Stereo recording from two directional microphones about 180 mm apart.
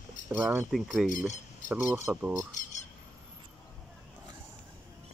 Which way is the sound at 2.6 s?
45° left (ahead or behind).